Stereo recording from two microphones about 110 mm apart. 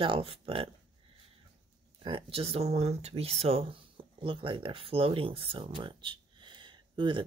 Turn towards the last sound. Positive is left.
turn(degrees=-45)  # may be behind; listen again after turning